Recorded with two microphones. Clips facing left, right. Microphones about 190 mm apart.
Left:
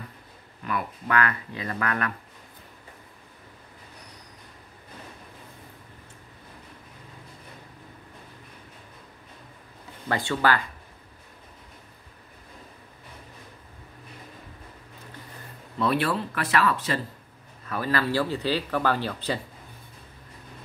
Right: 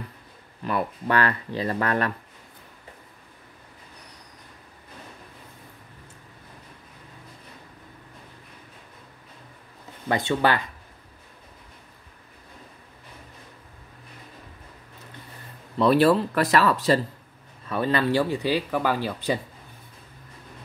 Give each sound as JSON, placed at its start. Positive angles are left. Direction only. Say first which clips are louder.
{"t": 0.7, "sound": "speech", "louder": "right 4 dB", "side_deg": -30}
{"t": 10.0, "sound": "speech", "louder": "right 2 dB", "side_deg": -20}
{"t": 15.8, "sound": "speech", "louder": "right 7 dB", "side_deg": -35}
{"t": 17.6, "sound": "speech", "louder": "right 3 dB", "side_deg": -25}